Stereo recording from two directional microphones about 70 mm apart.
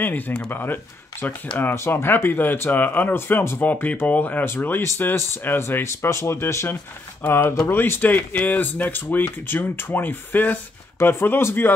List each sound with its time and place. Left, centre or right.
0.0 s speech: left